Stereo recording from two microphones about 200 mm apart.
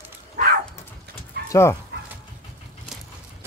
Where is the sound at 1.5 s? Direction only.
15° left (ahead or behind).